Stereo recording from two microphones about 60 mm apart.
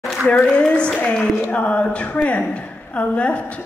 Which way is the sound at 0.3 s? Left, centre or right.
Centre.